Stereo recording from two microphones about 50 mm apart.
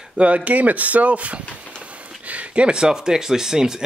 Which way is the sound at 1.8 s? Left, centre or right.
Right.